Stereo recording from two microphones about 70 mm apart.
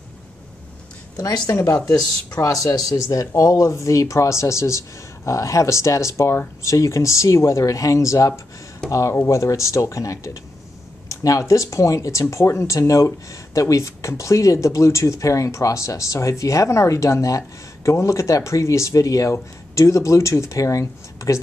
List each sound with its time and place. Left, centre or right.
1.1 s speech: left
1.5 s speech: left
3.1 s speech: left